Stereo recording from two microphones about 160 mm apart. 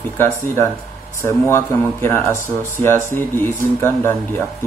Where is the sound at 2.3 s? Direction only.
20° right (ahead or behind).